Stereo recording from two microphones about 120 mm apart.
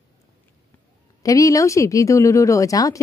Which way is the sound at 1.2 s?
30° left (ahead or behind).